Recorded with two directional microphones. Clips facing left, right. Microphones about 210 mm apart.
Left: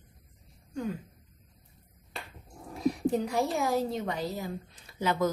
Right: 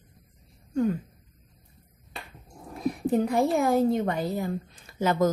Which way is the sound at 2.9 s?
55° right (ahead or behind).